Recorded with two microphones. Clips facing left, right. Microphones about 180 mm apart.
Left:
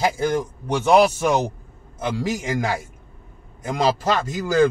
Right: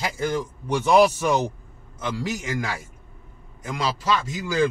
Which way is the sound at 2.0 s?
50° left (ahead or behind).